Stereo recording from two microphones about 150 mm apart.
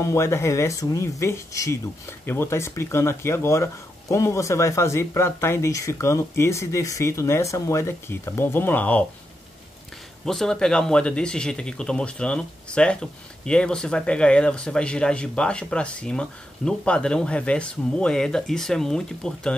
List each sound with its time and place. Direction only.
0.0 s speech: 20° left (ahead or behind)
10.2 s speech: 5° left (ahead or behind)